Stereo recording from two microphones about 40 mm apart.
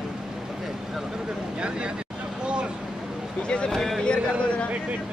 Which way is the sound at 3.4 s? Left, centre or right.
Left.